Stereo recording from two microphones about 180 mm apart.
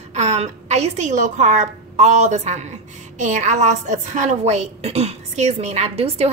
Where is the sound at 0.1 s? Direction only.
40° right (ahead or behind).